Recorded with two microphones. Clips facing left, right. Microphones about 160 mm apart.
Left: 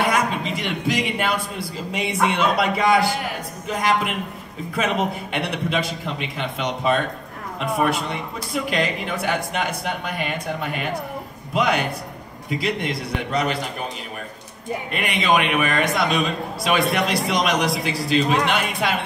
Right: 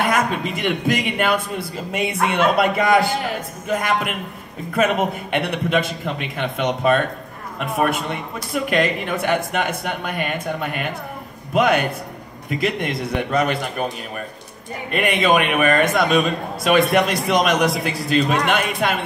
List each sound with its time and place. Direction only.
0.0 s a man's voice: 55° right (ahead or behind)
14.9 s a man's voice: 50° right (ahead or behind)